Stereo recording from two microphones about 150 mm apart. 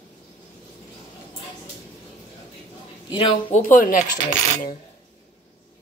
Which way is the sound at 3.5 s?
55° left (ahead or behind).